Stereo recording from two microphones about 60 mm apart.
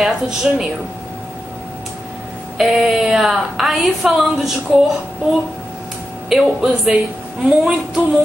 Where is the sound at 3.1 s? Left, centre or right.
Centre.